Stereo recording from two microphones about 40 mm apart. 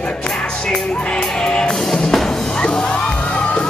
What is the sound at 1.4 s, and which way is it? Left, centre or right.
Music, centre.